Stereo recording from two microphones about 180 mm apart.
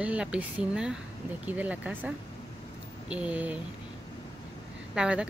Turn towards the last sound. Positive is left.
turn(degrees=-5)  # may be behind; listen again after turning